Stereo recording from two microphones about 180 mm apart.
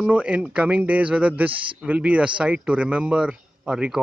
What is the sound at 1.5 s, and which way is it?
Speech, 30° right (ahead or behind).